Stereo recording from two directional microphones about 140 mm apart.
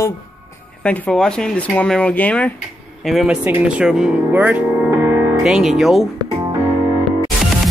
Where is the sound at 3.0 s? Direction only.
Centre (ahead or behind).